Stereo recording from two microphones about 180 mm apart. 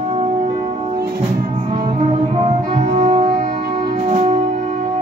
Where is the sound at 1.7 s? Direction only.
30° right (ahead or behind).